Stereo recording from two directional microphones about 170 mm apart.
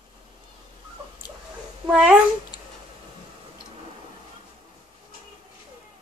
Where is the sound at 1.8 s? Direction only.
5° right (ahead or behind).